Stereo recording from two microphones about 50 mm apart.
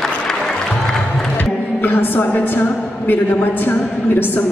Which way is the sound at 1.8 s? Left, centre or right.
Left.